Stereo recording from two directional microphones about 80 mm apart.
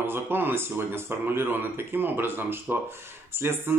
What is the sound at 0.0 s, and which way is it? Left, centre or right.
Speech, right.